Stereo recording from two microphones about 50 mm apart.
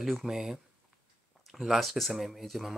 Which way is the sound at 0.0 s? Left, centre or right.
Centre.